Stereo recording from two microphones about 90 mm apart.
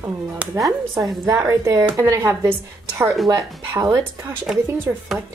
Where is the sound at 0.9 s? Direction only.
35° right (ahead or behind).